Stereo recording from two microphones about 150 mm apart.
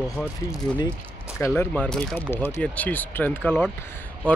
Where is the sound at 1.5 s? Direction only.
10° left (ahead or behind).